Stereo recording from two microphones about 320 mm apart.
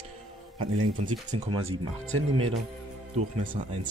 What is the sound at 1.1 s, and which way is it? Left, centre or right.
Speech, centre.